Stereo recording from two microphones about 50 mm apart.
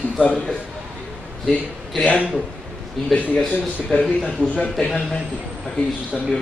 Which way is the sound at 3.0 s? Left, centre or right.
Centre.